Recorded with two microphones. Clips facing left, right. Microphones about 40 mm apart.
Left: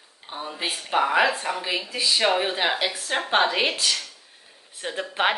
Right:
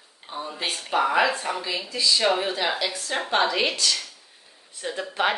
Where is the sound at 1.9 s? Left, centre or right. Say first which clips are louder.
Even; left.